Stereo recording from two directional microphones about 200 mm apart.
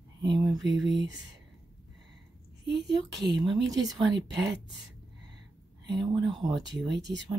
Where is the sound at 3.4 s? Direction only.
20° right (ahead or behind).